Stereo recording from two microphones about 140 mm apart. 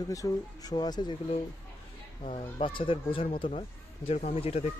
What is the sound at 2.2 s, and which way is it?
Speech, 40° left (ahead or behind).